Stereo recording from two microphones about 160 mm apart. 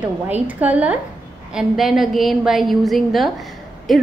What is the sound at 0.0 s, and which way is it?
A woman's voice, 10° right (ahead or behind).